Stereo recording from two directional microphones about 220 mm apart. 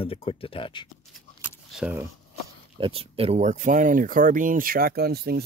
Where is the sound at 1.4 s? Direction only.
5° right (ahead or behind).